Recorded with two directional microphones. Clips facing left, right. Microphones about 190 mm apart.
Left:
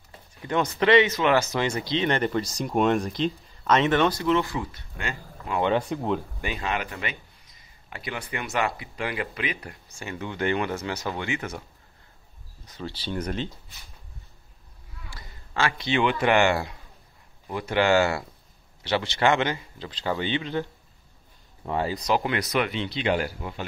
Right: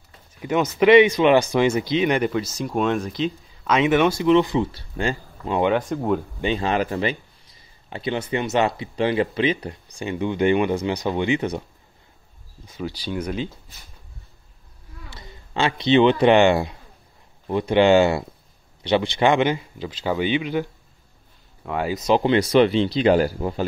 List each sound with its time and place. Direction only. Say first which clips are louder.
0.4 s speech: right 5 dB; 20° right (ahead or behind)
4.7 s speech: right 9 dB; 30° right (ahead or behind)
5.6 s speech: right 3 dB; 10° right (ahead or behind)
6.4 s a man's voice: right 8 dB; 30° right (ahead or behind)
12.6 s speech: right 5 dB; 10° right (ahead or behind)
15.0 s a man's voice: right 3 dB; 20° right (ahead or behind)
21.6 s speech: right 2 dB; 5° right (ahead or behind)
21.9 s speech: right 12 dB; 25° right (ahead or behind)